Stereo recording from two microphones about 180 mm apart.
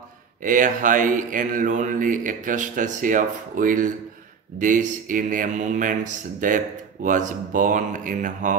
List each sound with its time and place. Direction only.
0.4 s a man's voice: 45° right (ahead or behind)